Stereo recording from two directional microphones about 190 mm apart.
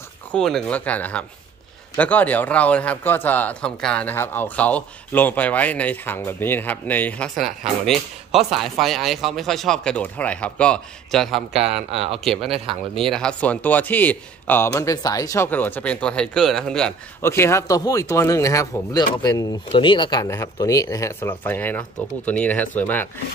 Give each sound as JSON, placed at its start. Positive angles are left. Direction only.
{"t": 0.3, "sound": "speech", "side_deg": 5}
{"t": 11.9, "sound": "speech", "side_deg": -30}
{"t": 12.9, "sound": "speech", "side_deg": 0}